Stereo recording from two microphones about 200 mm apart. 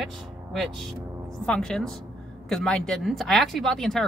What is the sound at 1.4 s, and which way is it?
Speech, 5° left (ahead or behind).